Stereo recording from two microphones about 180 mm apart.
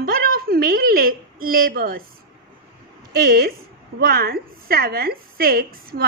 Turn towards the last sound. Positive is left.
turn(degrees=-55)  # may be behind; listen again after turning